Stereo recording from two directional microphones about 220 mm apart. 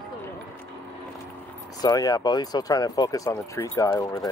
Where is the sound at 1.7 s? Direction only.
15° left (ahead or behind).